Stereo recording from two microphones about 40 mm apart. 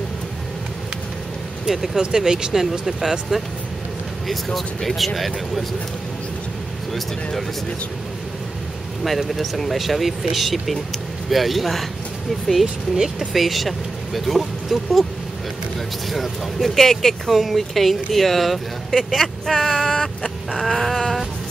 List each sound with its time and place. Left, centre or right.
1.7 s speech: centre
4.6 s speech: centre
9.0 s speech: centre
12.9 s speech: centre
13.3 s speech: centre
16.1 s speech: centre
20.6 s a sound: centre